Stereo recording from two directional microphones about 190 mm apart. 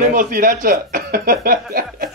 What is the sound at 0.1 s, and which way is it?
Speech, 45° right (ahead or behind).